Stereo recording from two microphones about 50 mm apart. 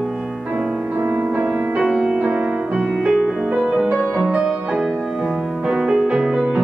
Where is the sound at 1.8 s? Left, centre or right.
Centre.